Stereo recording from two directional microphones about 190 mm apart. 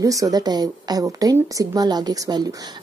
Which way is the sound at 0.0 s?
15° right (ahead or behind).